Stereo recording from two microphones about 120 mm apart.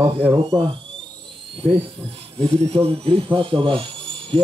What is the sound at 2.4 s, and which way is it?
Speech, 55° right (ahead or behind).